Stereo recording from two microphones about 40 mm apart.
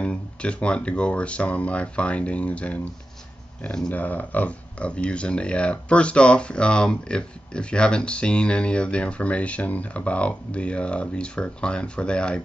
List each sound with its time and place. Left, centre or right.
0.0 s speech: left
3.9 s speech: left